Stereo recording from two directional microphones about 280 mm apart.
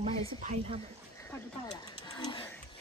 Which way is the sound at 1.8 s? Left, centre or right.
Centre.